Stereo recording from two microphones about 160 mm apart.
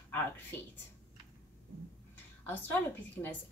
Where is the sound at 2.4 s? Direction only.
10° left (ahead or behind).